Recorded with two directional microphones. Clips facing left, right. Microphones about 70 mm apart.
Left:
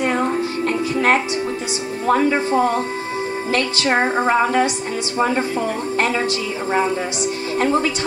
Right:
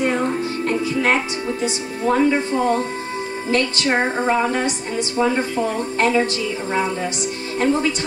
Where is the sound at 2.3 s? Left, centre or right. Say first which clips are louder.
Left 1 dB; left.